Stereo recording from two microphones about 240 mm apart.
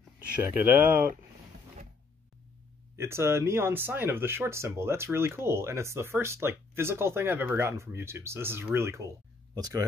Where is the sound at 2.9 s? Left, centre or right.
Centre.